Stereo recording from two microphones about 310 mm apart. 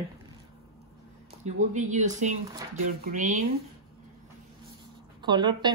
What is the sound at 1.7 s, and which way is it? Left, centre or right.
Speech, right.